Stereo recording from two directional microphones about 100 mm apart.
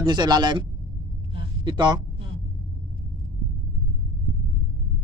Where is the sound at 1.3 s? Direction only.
55° right (ahead or behind).